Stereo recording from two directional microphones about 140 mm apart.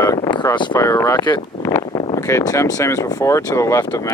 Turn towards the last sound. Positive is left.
turn(degrees=20)  # may be behind; listen again after turning